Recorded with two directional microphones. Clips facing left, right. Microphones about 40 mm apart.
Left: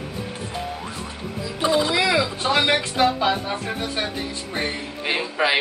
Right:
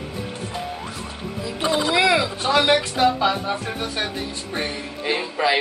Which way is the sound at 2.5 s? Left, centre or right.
Left.